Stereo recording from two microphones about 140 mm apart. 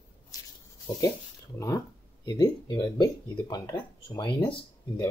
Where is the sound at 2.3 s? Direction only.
30° left (ahead or behind).